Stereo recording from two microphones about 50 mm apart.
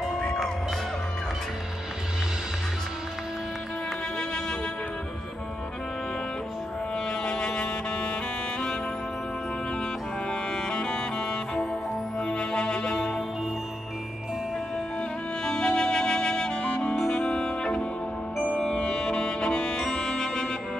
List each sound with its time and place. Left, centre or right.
0.2 s music: centre
7.1 s music: centre
10.5 s music: centre
15.4 s music: centre